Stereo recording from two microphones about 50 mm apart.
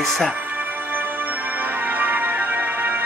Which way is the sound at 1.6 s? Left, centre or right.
Right.